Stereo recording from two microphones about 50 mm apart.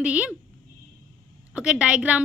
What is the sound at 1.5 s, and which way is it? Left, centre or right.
Speech, right.